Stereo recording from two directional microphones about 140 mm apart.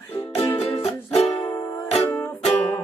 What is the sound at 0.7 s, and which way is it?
Music, 45° left (ahead or behind).